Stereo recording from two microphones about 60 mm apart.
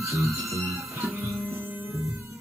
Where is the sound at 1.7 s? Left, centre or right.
Right.